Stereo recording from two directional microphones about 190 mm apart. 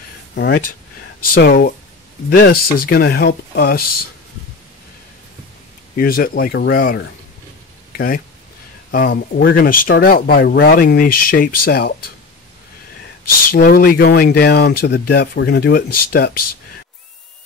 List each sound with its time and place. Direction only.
0.3 s speech: 60° left (ahead or behind)
1.3 s speech: 50° left (ahead or behind)
5.9 s speech: 50° left (ahead or behind)
13.5 s speech: 50° left (ahead or behind)